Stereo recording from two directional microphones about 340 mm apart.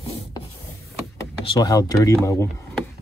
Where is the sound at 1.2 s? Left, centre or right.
Centre.